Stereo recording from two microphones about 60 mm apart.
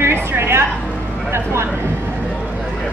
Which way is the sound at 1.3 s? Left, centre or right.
Right.